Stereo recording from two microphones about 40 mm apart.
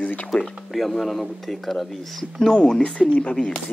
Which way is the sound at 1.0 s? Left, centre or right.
Centre.